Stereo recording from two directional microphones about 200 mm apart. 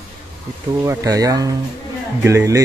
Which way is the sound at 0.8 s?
15° right (ahead or behind).